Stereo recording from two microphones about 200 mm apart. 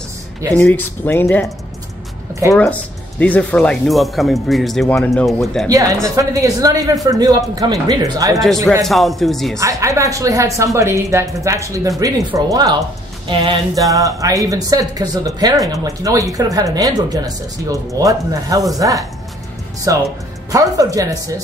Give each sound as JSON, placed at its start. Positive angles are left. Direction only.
{"t": 0.5, "sound": "speech", "side_deg": 10}
{"t": 2.5, "sound": "speech", "side_deg": 5}
{"t": 5.7, "sound": "speech", "side_deg": -15}
{"t": 8.8, "sound": "speech", "side_deg": 0}
{"t": 9.6, "sound": "speech", "side_deg": -15}